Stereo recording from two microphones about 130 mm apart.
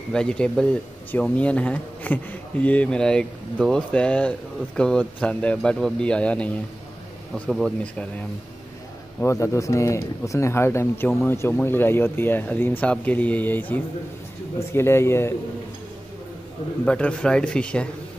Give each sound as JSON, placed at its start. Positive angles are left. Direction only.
{"t": 0.1, "sound": "speech", "side_deg": 5}
{"t": 3.9, "sound": "speech", "side_deg": 10}
{"t": 9.2, "sound": "speech", "side_deg": 20}
{"t": 16.8, "sound": "speech", "side_deg": 10}